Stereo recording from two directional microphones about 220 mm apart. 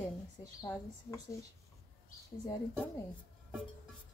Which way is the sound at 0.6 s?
15° left (ahead or behind).